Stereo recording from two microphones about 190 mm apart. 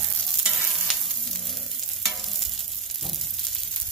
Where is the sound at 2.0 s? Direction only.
Centre (ahead or behind).